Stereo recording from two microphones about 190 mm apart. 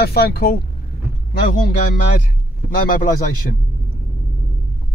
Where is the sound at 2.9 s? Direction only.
50° left (ahead or behind).